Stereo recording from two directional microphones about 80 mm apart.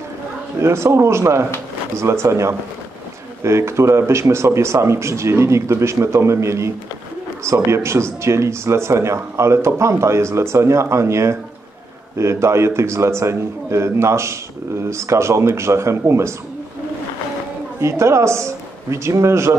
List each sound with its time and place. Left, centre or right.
0.6 s speech: right
17.7 s speech: right